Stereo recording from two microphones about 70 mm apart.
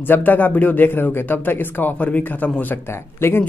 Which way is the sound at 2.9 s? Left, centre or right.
Left.